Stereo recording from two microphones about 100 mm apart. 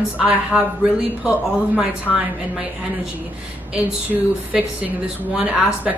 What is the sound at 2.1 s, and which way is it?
Speech, centre (ahead or behind).